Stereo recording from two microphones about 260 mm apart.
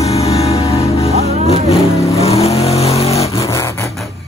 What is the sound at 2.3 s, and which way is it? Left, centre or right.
Vehicle, left.